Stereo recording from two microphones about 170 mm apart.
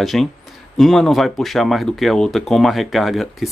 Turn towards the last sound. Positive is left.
turn(degrees=0)  # may be behind; listen again after turning